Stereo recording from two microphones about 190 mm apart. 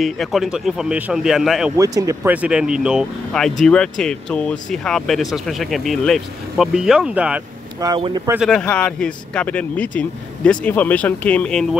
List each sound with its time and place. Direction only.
0.0 s speech: centre (ahead or behind)
1.8 s speech: 15° right (ahead or behind)
7.8 s speech: 20° right (ahead or behind)
8.4 s speech: 5° left (ahead or behind)